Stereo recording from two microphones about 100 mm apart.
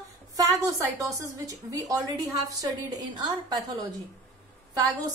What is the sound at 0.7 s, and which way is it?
A woman's voice, 35° right (ahead or behind).